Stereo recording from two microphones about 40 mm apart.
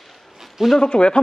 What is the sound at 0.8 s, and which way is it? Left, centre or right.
Speech, left.